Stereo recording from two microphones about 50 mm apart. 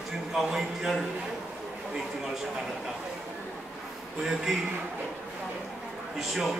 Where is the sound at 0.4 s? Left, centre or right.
Centre.